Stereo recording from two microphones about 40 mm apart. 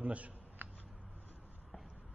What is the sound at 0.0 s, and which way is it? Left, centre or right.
Speech, right.